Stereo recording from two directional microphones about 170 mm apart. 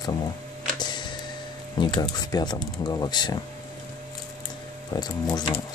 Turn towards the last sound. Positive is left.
turn(degrees=20)  # may be behind; listen again after turning